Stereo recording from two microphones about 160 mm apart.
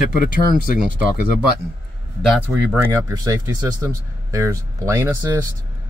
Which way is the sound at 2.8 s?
20° right (ahead or behind).